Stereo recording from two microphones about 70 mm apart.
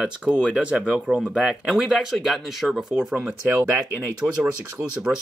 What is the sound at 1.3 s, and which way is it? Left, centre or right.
Speech, centre.